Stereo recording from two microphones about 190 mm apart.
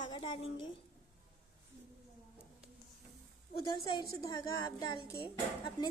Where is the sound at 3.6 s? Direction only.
25° left (ahead or behind).